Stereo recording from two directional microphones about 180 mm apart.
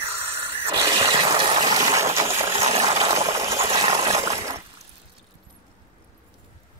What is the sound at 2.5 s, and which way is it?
Water, 35° right (ahead or behind).